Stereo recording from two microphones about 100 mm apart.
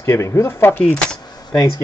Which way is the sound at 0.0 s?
30° left (ahead or behind).